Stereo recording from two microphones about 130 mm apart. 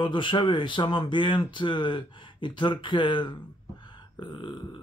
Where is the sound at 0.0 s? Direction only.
40° left (ahead or behind).